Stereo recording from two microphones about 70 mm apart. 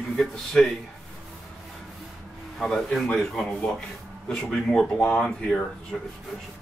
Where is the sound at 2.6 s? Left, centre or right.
Centre.